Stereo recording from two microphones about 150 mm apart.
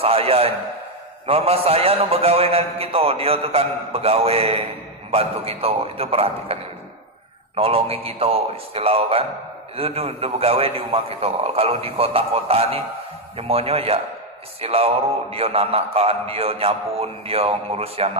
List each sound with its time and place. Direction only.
0.0 s mantra: 40° right (ahead or behind)